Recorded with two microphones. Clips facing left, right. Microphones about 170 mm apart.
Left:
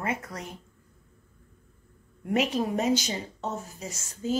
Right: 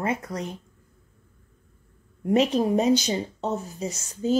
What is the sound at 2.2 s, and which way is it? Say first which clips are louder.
A woman's voice: right 5 dB; 25° right (ahead or behind).